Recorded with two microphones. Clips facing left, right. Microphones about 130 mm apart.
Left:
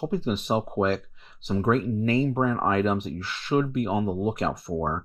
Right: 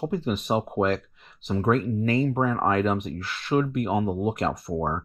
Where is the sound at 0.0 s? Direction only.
Centre (ahead or behind).